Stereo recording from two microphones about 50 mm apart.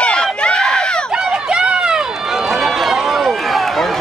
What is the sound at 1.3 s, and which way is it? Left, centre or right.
Run, centre.